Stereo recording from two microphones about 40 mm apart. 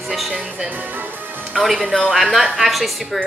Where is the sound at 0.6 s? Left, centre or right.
Right.